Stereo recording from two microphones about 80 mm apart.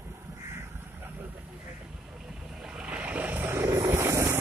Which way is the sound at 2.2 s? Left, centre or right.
Centre.